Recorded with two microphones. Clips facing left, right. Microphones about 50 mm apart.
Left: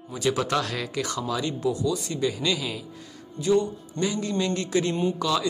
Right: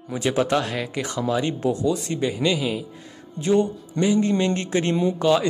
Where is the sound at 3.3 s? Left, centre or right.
Right.